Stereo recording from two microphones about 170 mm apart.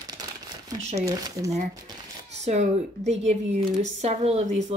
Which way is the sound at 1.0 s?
20° right (ahead or behind).